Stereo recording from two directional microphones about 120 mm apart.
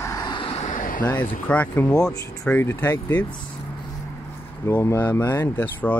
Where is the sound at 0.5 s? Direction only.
90° left.